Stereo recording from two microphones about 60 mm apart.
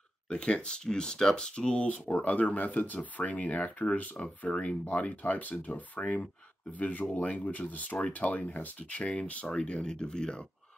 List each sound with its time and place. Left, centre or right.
0.3 s speech: centre